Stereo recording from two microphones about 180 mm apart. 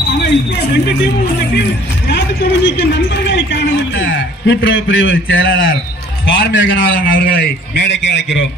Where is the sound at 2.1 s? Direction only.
70° left (ahead or behind).